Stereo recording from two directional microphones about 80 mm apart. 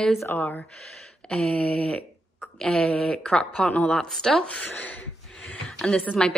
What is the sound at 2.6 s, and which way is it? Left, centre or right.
A woman's voice, centre.